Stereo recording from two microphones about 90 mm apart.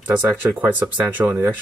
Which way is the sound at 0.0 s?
20° right (ahead or behind).